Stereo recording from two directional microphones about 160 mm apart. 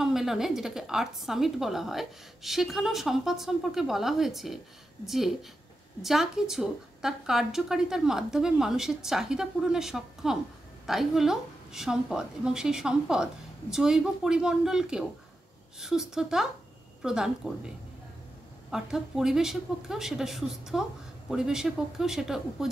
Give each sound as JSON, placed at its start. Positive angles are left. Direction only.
{"t": 0.0, "sound": "a woman's voice", "side_deg": 0}
{"t": 18.7, "sound": "a woman's voice", "side_deg": -5}